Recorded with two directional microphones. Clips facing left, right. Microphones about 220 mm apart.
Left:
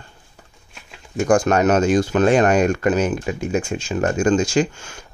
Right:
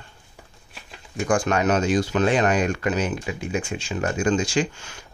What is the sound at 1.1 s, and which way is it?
Speech, 45° left (ahead or behind).